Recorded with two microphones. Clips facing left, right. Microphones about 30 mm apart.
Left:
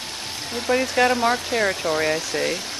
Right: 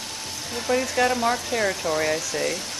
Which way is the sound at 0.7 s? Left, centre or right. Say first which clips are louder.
Left 3 dB; centre.